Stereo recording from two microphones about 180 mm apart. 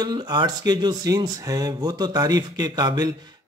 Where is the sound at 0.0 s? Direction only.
25° right (ahead or behind).